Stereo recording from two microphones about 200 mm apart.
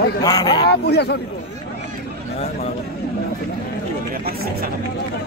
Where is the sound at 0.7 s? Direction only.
55° left (ahead or behind).